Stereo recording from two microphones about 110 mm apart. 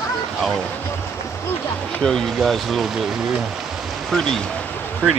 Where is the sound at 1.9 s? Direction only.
5° left (ahead or behind).